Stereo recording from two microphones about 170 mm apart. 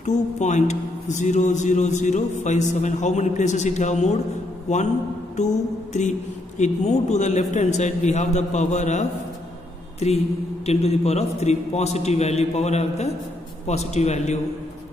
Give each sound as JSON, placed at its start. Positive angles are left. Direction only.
{"t": 0.0, "sound": "a man's voice", "side_deg": 45}
{"t": 6.6, "sound": "a man's voice", "side_deg": 40}